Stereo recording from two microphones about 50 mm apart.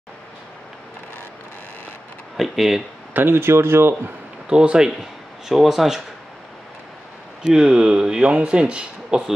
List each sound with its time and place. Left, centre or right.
2.3 s speech: centre
3.1 s a man's voice: right
4.5 s speech: centre
5.5 s speech: centre
7.4 s speech: centre